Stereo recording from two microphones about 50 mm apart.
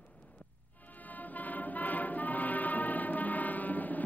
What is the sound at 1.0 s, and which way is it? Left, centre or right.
Music, left.